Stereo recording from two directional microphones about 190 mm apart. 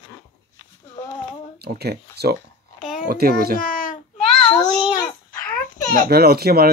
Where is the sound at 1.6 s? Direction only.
55° right (ahead or behind).